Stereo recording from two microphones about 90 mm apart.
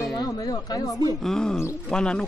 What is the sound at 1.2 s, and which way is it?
Speech, 5° left (ahead or behind).